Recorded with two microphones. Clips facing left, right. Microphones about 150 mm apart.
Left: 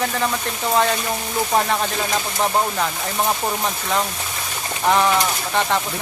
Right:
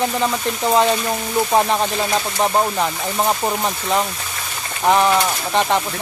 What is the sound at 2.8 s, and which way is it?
Speech, 15° right (ahead or behind).